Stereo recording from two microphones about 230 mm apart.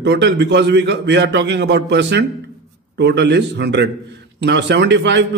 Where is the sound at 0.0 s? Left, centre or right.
Right.